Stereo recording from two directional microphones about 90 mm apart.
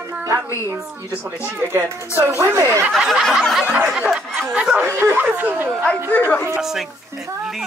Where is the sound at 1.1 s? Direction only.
20° right (ahead or behind).